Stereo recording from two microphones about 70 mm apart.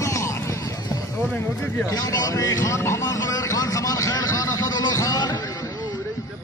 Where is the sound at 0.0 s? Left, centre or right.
Left.